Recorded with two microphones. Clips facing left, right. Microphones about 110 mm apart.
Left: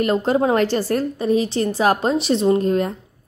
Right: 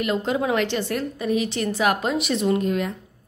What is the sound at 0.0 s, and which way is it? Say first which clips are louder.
A woman's voice: left 5 dB; 40° left (ahead or behind).